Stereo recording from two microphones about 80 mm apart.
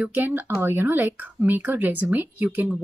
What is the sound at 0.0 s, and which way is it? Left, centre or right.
Speech, right.